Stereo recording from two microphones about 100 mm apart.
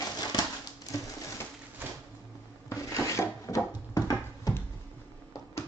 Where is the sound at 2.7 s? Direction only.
30° left (ahead or behind).